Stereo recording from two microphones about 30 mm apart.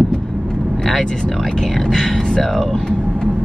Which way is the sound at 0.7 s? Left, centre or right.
Centre.